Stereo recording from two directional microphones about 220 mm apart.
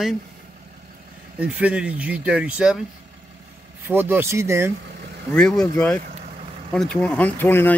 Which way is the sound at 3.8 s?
10° right (ahead or behind).